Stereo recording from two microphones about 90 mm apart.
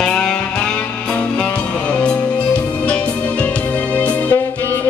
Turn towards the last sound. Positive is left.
turn(degrees=15)  # may be behind; listen again after turning